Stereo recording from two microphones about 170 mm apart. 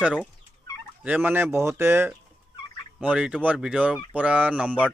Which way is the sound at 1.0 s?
10° right (ahead or behind).